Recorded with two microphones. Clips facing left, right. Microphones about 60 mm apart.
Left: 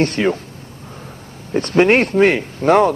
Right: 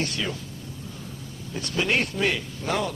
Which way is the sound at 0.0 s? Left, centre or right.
Left.